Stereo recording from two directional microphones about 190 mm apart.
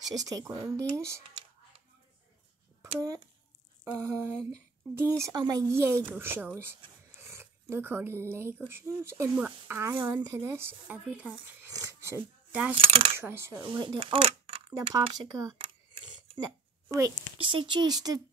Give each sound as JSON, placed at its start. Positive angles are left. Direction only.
{"t": 0.0, "sound": "speech", "side_deg": -20}
{"t": 2.8, "sound": "speech", "side_deg": -20}
{"t": 11.7, "sound": "a sound", "side_deg": -15}
{"t": 12.7, "sound": "speech", "side_deg": -30}
{"t": 13.2, "sound": "speech", "side_deg": -10}
{"t": 13.6, "sound": "speech", "side_deg": -25}